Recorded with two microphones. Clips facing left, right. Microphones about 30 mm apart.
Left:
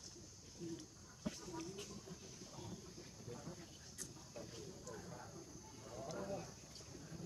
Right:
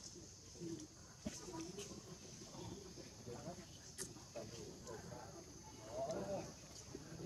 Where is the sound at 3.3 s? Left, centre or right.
Centre.